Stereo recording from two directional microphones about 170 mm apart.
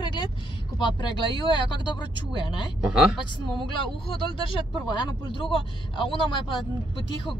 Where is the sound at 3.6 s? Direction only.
30° left (ahead or behind).